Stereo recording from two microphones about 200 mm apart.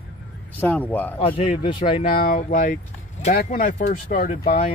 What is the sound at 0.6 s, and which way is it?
Speech, 10° left (ahead or behind).